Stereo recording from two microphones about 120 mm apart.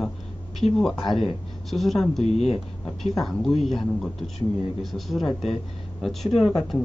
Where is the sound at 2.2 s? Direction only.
60° left (ahead or behind).